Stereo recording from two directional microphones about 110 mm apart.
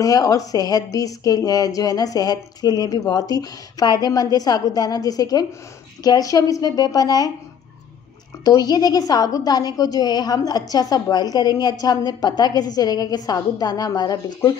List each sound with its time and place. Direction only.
0.0 s a woman's voice: 35° left (ahead or behind)
8.5 s a woman's voice: 40° left (ahead or behind)